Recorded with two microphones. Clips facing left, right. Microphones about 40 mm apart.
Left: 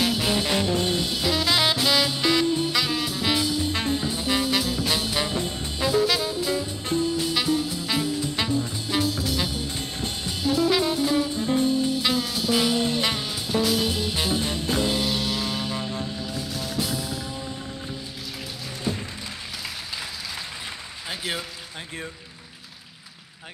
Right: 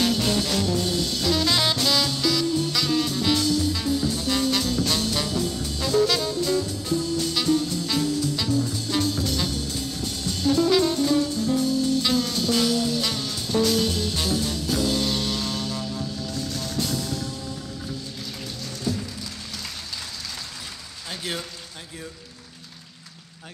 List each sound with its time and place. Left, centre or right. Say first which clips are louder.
0.0 s music: right 1 dB; centre
2.2 s music: left 1 dB; left
3.7 s music: right 1 dB; left
4.1 s music: even; centre
5.9 s jazz: right 1 dB; centre
6.8 s music: left 1 dB; left
7.1 s music: right 3 dB; centre
9.8 s music: even; left
15.0 s music: even; centre; by 16.3 s left
16.3 s music: even; centre
21.1 s a sound: left 1 dB; centre